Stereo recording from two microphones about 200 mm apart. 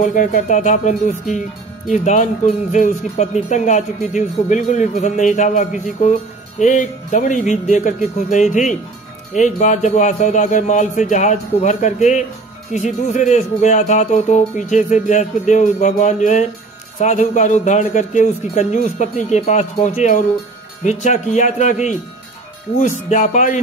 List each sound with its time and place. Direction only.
0.0 s speech: 40° left (ahead or behind)